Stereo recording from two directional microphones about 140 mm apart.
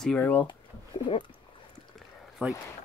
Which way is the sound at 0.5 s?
35° left (ahead or behind).